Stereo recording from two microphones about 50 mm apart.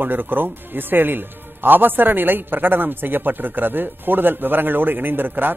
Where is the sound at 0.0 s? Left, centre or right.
Right.